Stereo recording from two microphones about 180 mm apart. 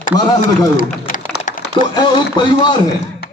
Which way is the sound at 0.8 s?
50° left (ahead or behind).